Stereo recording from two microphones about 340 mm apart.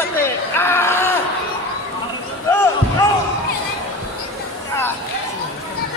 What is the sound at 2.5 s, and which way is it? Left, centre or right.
Basketball bounce, centre.